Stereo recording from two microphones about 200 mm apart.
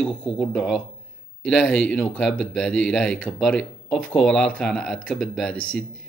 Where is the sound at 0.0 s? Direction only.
Centre (ahead or behind).